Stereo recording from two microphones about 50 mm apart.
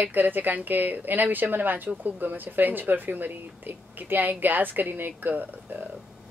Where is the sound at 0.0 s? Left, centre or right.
Right.